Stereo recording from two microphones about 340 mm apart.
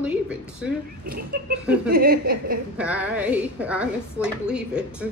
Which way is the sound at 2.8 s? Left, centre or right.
Centre.